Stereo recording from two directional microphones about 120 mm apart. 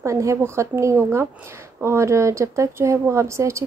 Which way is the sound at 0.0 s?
25° right (ahead or behind).